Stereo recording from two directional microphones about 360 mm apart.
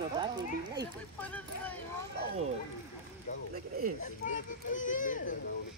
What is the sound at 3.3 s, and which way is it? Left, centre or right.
A child's voice, centre.